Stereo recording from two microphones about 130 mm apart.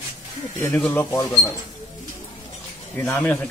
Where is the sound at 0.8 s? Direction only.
20° left (ahead or behind).